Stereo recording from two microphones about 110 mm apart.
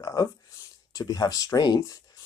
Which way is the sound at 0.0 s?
35° left (ahead or behind).